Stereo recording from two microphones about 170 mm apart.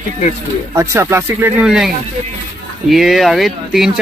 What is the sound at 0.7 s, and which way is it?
Speech, 20° right (ahead or behind).